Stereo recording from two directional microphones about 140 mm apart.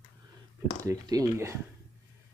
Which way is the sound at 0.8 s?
25° right (ahead or behind).